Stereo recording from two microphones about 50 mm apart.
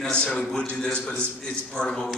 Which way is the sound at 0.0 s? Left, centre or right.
Centre.